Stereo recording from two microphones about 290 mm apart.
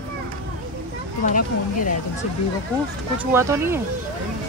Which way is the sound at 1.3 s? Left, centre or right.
Left.